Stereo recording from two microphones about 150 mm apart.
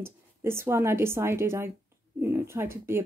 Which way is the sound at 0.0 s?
15° right (ahead or behind).